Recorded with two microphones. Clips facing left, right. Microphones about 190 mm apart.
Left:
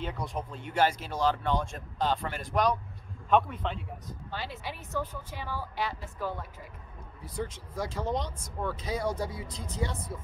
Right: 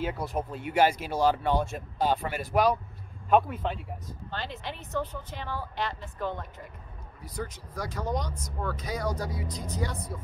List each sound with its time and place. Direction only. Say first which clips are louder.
0.0 s a man's voice: right 4 dB; 5° right (ahead or behind)
4.3 s a woman's voice: right 1 dB; 10° left (ahead or behind)
7.3 s speech: left 1 dB; 25° left (ahead or behind)